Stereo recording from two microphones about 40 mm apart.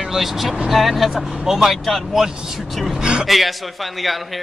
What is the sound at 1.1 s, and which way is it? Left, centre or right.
A man's voice, centre.